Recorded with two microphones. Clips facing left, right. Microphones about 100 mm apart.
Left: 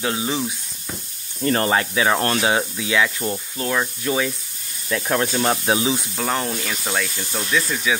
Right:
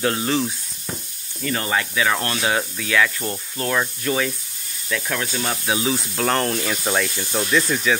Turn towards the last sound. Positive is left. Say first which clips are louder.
# right 2 dB
turn(degrees=0)  # may be behind; listen again after turning